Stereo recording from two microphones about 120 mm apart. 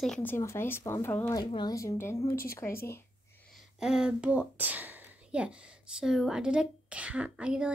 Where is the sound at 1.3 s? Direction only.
40° left (ahead or behind).